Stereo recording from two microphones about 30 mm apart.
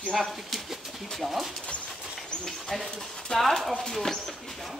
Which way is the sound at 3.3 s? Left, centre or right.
Left.